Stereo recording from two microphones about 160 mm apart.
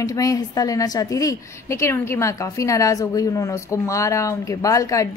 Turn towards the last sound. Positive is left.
turn(degrees=20)  # may be behind; listen again after turning